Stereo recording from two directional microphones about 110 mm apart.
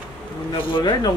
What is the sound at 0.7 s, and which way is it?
Speech, 45° left (ahead or behind).